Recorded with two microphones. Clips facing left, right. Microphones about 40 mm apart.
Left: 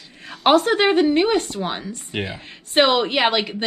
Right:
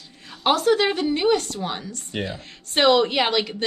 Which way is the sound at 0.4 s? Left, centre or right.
Left.